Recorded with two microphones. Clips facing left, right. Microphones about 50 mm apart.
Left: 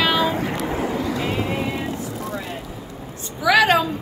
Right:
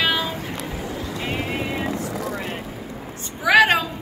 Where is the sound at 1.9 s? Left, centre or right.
Right.